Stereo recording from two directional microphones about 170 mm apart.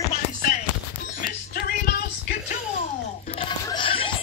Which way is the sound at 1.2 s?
60° left (ahead or behind).